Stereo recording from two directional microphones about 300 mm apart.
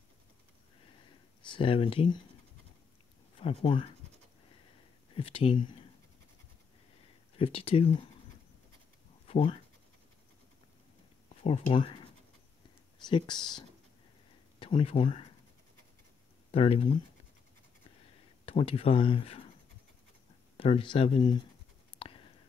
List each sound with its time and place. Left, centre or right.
1.4 s speech: centre
3.3 s speech: centre
5.1 s speech: centre
7.3 s speech: centre
9.3 s speech: centre
11.4 s speech: centre
16.5 s speech: centre
18.4 s speech: centre
20.5 s speech: centre
21.9 s a sound: centre